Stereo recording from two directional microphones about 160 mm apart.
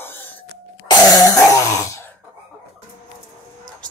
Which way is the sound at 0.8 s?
20° left (ahead or behind).